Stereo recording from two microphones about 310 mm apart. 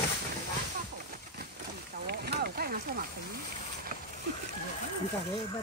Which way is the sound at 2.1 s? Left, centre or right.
Right.